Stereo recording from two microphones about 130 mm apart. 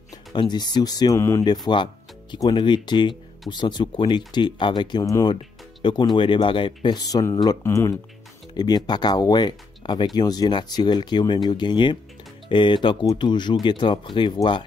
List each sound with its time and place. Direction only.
0.3 s speech: 35° left (ahead or behind)
8.5 s speech: 30° left (ahead or behind)